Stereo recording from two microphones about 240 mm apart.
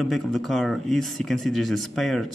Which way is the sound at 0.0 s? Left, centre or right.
Centre.